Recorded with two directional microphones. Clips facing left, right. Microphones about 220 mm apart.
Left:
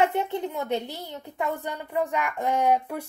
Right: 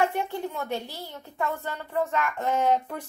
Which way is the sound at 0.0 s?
20° left (ahead or behind).